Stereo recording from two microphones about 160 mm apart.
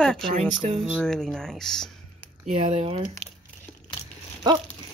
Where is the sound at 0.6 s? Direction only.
45° right (ahead or behind).